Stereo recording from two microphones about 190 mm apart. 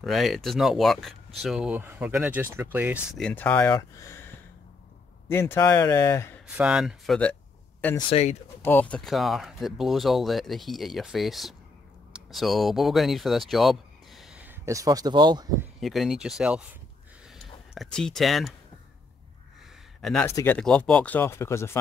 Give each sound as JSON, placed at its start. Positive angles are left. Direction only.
{"t": 0.0, "sound": "speech", "side_deg": 0}
{"t": 3.2, "sound": "speech", "side_deg": 5}
{"t": 5.3, "sound": "speech", "side_deg": 10}
{"t": 6.4, "sound": "speech", "side_deg": -5}
{"t": 8.1, "sound": "speech", "side_deg": 35}
{"t": 8.6, "sound": "speech", "side_deg": 10}
{"t": 15.8, "sound": "speech", "side_deg": 0}
{"t": 17.7, "sound": "speech", "side_deg": 5}
{"t": 20.0, "sound": "a man's voice", "side_deg": 0}